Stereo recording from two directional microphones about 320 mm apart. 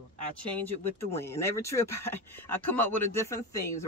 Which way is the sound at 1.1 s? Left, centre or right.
Centre.